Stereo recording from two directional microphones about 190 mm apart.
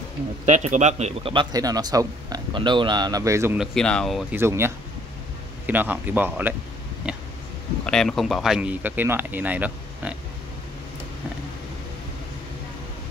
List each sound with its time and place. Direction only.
0.5 s speech: 40° right (ahead or behind); by 3.5 s 15° right (ahead or behind)
3.5 s speech: 5° left (ahead or behind)
4.4 s speech: 15° right (ahead or behind)
7.8 s speech: 5° left (ahead or behind)